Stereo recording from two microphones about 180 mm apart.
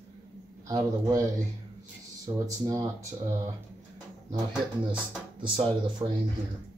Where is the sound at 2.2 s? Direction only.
15° right (ahead or behind).